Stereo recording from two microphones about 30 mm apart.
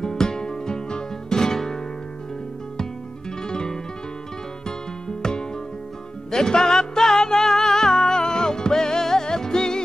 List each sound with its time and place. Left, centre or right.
0.0 s music: centre
2.8 s music: left